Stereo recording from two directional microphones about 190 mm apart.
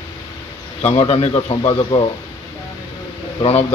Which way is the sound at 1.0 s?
30° left (ahead or behind).